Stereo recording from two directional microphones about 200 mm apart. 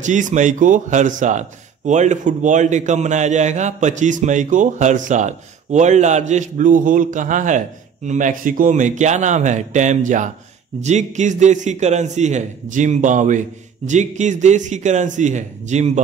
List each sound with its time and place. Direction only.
0.0 s a man's voice: 40° right (ahead or behind)